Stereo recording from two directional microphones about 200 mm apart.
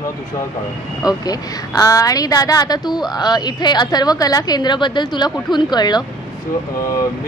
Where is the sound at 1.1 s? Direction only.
20° left (ahead or behind).